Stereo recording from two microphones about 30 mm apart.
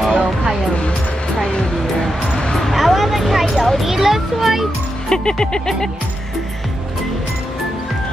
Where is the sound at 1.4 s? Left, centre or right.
Left.